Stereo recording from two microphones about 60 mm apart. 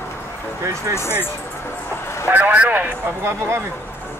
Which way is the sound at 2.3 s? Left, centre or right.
Right.